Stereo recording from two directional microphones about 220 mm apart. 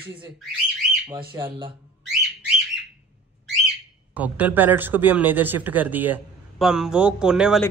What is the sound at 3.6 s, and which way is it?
Speech, 5° right (ahead or behind).